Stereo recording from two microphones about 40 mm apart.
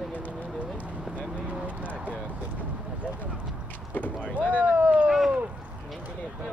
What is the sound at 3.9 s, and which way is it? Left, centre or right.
Vehicle, left.